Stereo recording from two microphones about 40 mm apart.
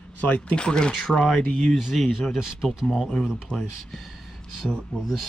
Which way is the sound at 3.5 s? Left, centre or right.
Left.